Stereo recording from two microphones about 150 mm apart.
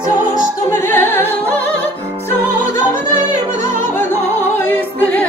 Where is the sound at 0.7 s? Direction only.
15° left (ahead or behind).